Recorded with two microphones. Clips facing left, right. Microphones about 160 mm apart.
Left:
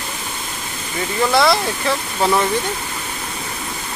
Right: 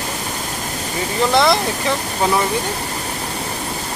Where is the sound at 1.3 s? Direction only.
20° right (ahead or behind).